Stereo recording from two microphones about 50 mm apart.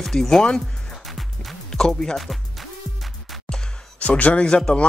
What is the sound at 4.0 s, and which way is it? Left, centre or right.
Speech, left.